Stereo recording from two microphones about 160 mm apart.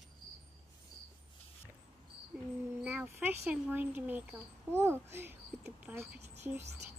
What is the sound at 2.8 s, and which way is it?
Speech, 10° right (ahead or behind).